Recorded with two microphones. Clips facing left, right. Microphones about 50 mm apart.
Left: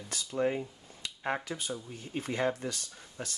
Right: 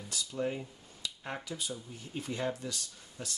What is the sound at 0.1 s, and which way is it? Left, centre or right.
Speech, left.